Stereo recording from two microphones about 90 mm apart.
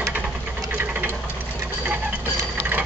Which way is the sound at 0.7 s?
20° right (ahead or behind).